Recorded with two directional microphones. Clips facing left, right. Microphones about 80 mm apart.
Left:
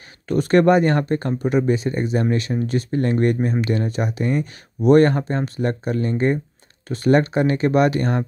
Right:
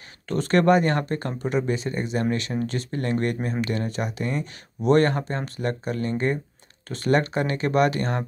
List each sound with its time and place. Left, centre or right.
0.3 s speech: left